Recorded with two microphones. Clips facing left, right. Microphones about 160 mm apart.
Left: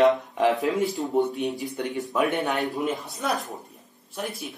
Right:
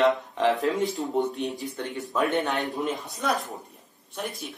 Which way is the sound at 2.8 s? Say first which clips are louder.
Left 1 dB; centre (ahead or behind).